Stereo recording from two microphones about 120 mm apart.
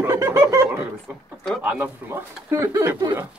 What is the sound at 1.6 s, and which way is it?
Speech, 15° right (ahead or behind).